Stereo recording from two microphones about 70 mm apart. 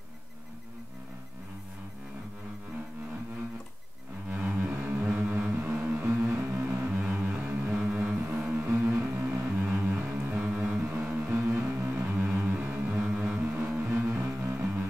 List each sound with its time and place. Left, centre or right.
4.3 s cello: right
5.1 s music: right
6.0 s music: right
6.6 s music: right
8.6 s music: right
9.0 s music: right
13.8 s music: right